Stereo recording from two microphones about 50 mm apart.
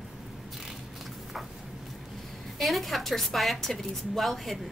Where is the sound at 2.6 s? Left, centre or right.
Centre.